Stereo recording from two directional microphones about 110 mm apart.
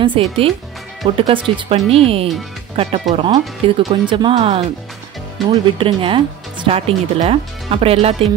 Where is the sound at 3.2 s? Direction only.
45° right (ahead or behind).